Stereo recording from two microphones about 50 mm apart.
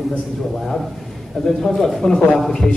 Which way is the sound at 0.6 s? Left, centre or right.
Centre.